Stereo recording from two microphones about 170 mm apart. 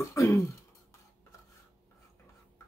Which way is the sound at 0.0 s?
15° left (ahead or behind).